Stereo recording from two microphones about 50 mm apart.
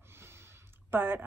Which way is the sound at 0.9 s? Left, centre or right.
Right.